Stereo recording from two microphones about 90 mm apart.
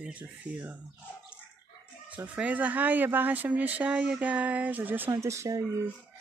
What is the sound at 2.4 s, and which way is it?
Speech, 20° right (ahead or behind).